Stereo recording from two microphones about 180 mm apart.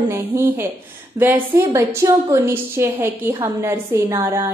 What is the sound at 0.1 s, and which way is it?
A woman's voice, 15° right (ahead or behind).